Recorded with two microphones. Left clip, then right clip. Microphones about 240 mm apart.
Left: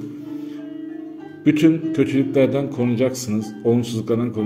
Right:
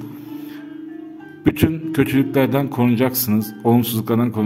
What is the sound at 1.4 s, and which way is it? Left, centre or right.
A man's voice, right.